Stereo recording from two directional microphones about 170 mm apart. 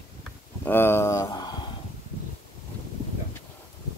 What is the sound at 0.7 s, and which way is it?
Speech, 15° left (ahead or behind).